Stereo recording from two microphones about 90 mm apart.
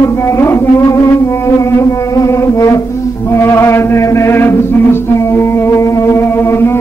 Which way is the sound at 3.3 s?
30° left (ahead or behind).